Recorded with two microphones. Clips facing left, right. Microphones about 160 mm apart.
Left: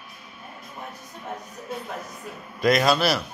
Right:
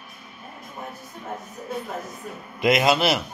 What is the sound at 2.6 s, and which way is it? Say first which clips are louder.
Speech: right 1 dB; 20° right (ahead or behind).